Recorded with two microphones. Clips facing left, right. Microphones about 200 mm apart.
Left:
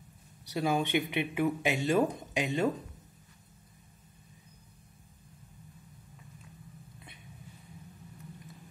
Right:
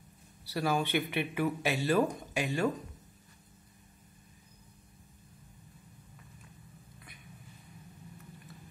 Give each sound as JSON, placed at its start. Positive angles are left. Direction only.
{"t": 0.5, "sound": "speech", "side_deg": 20}